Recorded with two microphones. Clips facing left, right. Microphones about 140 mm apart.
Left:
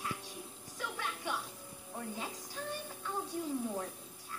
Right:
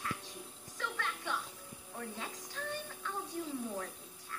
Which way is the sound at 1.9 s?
15° left (ahead or behind).